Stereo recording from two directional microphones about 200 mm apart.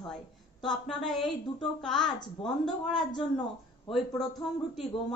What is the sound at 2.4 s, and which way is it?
A woman's voice, 30° left (ahead or behind).